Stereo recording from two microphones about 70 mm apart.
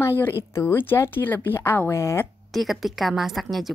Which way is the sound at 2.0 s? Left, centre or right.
Left.